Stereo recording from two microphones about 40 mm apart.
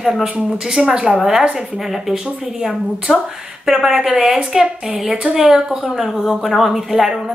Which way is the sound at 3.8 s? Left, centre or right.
Centre.